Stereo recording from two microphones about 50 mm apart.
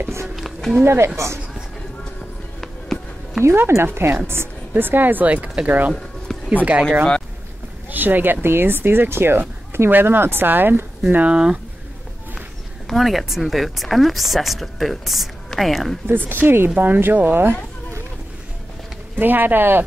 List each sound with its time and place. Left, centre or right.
0.8 s a woman's voice: right
2.6 s music: centre
3.5 s speech: right
7.9 s speech: right
11.1 s speech: right
12.8 s speech: centre
16.1 s speech: right
19.1 s speech: right